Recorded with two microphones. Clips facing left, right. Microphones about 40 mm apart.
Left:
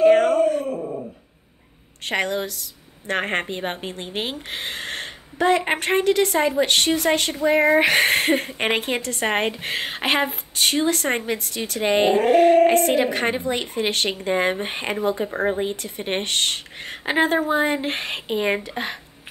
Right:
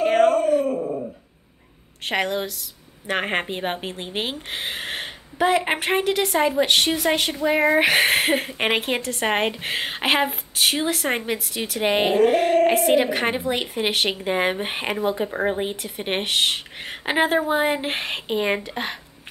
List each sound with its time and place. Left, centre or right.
0.0 s dog: centre
0.7 s dog: centre
2.0 s a woman's voice: centre